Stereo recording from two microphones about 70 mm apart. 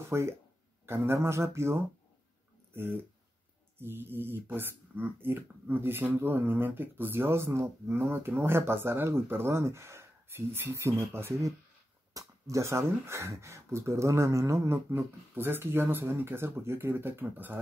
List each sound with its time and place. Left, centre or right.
0.1 s speech: right
2.7 s speech: right